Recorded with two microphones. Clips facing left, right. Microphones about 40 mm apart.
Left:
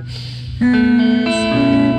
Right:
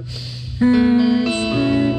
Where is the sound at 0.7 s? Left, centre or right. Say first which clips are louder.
Left 2 dB; left.